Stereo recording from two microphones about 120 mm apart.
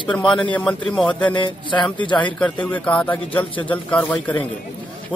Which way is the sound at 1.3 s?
40° left (ahead or behind).